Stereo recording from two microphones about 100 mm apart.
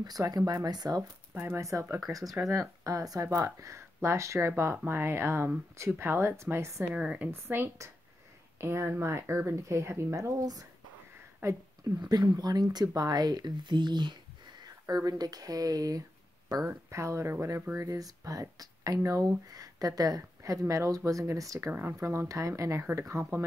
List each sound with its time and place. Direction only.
0.0 s speech: 40° right (ahead or behind)
1.3 s speech: 20° right (ahead or behind)
1.6 s speech: 30° right (ahead or behind)
6.8 s a woman's voice: 15° right (ahead or behind)
10.4 s speech: 40° right (ahead or behind)
11.4 s speech: 25° right (ahead or behind)
12.0 s speech: 45° right (ahead or behind); by 17.8 s 25° right (ahead or behind)
17.8 s speech: 35° right (ahead or behind)